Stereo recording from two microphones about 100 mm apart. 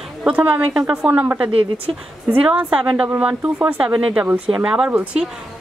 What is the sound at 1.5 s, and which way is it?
Speech, 65° right (ahead or behind).